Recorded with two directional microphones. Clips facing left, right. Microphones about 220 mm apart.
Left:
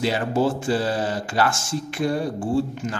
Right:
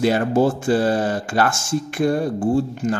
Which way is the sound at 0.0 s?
50° right (ahead or behind).